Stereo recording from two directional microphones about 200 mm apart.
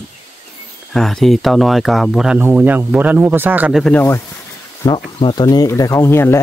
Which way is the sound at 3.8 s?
10° left (ahead or behind).